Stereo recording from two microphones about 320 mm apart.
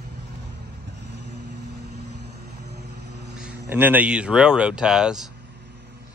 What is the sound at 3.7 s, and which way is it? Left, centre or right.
Speech, centre.